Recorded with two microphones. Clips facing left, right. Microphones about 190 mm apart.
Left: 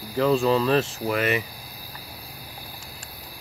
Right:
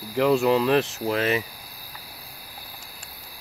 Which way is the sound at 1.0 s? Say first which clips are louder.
Even; 30° right (ahead or behind).